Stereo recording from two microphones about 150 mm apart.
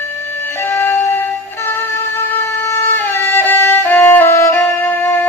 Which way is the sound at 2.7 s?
15° left (ahead or behind).